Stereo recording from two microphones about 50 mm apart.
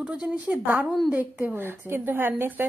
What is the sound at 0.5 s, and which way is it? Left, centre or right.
Speech, right.